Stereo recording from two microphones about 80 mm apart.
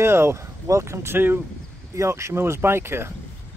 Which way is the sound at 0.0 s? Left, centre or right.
Right.